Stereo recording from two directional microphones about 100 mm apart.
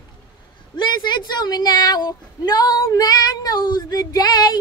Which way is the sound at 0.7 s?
50° left (ahead or behind).